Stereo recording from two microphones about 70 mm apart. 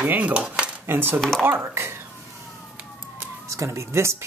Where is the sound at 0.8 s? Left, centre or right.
Right.